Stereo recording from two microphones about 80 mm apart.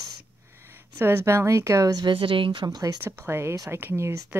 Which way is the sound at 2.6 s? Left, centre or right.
Right.